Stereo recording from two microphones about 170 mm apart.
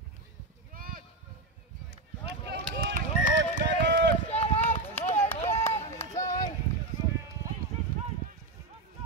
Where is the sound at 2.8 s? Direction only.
55° right (ahead or behind).